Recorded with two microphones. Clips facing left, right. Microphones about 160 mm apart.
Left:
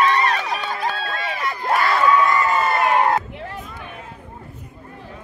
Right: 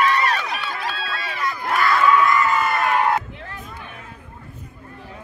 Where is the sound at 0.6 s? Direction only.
45° left (ahead or behind).